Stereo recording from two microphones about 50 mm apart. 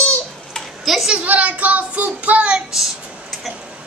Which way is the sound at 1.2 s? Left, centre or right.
Right.